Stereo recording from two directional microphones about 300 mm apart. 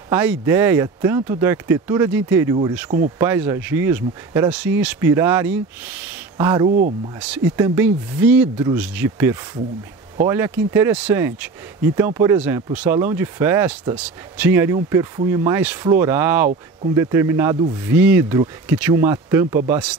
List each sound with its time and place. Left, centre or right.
0.1 s speech: centre
6.7 s speech: right
7.5 s speech: centre